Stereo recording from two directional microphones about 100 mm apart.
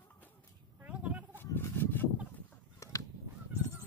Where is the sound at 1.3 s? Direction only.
20° left (ahead or behind).